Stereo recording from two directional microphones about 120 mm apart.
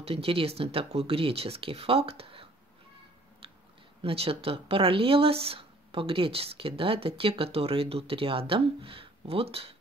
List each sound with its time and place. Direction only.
0.0 s speech: 50° right (ahead or behind)
4.0 s speech: 55° right (ahead or behind)